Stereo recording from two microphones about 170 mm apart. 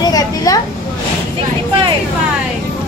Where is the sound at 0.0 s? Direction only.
20° left (ahead or behind).